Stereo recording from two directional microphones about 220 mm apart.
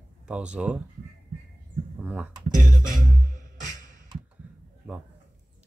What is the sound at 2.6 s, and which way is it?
Music, 35° right (ahead or behind).